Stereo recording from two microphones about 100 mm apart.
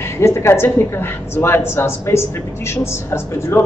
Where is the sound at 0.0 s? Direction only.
25° left (ahead or behind).